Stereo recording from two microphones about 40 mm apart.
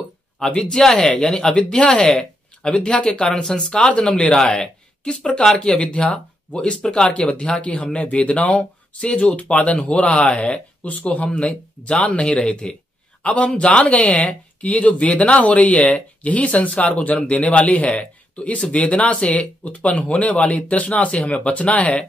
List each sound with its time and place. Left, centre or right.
0.5 s speech: centre
2.0 s a sound: centre
2.7 s a man's voice: left